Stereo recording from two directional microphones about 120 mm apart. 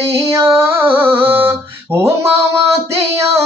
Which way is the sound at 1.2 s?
20° right (ahead or behind).